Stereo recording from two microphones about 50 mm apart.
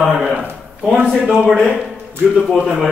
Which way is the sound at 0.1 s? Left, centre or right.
Centre.